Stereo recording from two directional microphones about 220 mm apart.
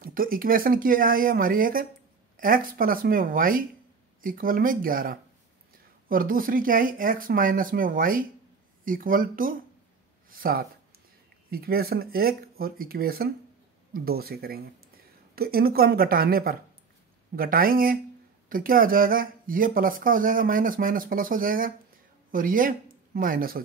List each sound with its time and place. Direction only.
0.0 s speech: 40° right (ahead or behind)